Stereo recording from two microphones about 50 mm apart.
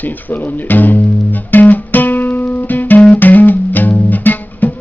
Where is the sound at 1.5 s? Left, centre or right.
Left.